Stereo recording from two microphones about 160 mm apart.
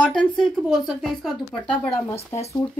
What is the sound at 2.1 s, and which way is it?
Speech, 40° left (ahead or behind).